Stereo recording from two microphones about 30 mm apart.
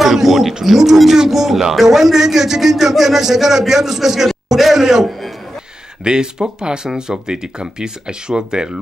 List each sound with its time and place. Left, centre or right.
0.0 s a man's voice: centre
6.0 s speech: right